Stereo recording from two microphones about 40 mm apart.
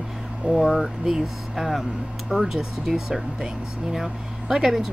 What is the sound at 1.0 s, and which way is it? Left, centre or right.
Speech, centre.